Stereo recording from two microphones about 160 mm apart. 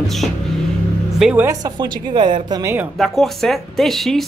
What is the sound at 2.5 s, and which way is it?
Speech, 15° right (ahead or behind).